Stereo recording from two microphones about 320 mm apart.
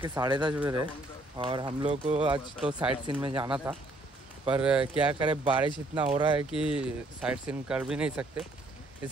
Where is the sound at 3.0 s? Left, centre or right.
Centre.